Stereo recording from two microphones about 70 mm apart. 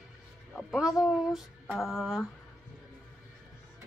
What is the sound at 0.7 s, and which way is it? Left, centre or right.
A woman's voice, centre.